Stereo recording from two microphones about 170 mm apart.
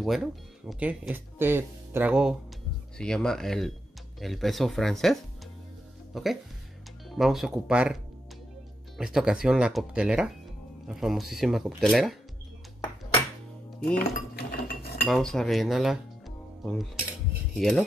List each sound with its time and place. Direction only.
0.0 s speech: centre (ahead or behind)
3.0 s speech: 5° left (ahead or behind)
13.9 s cutlery: 65° left (ahead or behind)
15.0 s speech: centre (ahead or behind)